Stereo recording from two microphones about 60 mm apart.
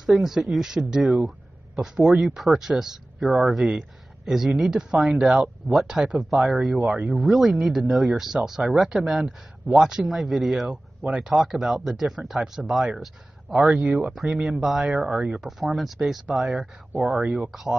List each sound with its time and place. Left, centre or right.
0.0 s speech: centre